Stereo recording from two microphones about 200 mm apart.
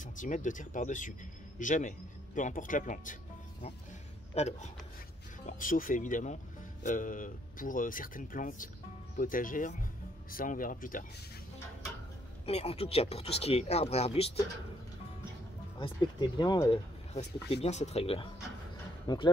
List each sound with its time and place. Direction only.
0.0 s speech: 40° left (ahead or behind)
4.3 s speech: 35° left (ahead or behind)
12.4 s speech: 30° left (ahead or behind)
15.8 s speech: 20° left (ahead or behind)
17.1 s speech: 30° left (ahead or behind)